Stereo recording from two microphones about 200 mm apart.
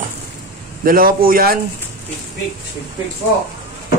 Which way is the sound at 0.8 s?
45° right (ahead or behind).